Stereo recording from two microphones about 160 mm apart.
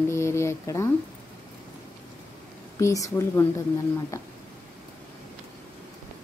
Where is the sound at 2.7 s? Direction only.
20° left (ahead or behind).